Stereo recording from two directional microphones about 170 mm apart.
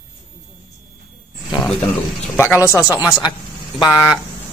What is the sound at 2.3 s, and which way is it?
Speech, 15° left (ahead or behind).